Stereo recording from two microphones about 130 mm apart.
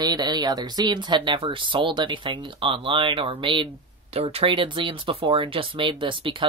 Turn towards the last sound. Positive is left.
turn(degrees=-40)  # may be behind; listen again after turning